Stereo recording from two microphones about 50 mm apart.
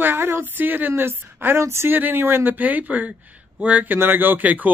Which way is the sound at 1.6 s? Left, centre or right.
Right.